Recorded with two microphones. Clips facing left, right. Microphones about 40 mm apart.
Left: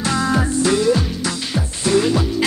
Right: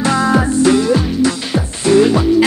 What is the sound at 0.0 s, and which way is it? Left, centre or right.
Music, right.